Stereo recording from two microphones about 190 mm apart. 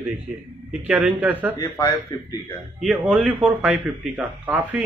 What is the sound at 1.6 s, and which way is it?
Speech, 15° left (ahead or behind).